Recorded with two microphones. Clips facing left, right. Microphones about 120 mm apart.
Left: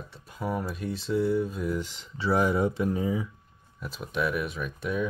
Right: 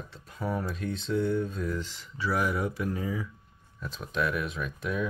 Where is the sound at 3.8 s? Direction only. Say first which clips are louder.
Left 1 dB; 5° left (ahead or behind).